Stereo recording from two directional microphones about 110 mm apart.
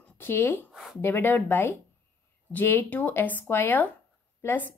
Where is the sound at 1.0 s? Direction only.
20° left (ahead or behind).